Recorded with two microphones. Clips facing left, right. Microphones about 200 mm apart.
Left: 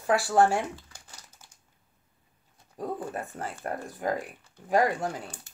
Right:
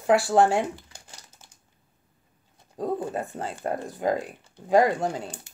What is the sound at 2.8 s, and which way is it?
Speech, 25° right (ahead or behind).